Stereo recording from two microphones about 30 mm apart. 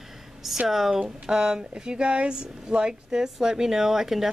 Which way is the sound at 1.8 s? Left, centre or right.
Right.